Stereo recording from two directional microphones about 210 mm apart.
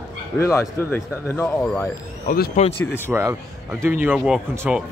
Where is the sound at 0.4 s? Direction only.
15° left (ahead or behind).